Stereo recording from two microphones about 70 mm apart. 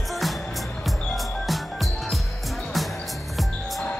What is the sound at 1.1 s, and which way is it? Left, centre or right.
Music, centre.